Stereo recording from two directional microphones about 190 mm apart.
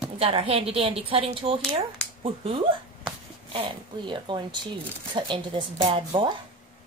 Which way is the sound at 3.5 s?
25° right (ahead or behind).